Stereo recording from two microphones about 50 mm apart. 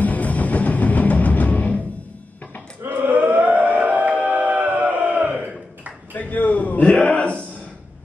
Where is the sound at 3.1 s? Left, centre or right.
Right.